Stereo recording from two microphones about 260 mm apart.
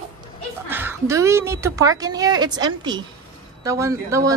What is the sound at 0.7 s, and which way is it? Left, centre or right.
A woman's voice, centre.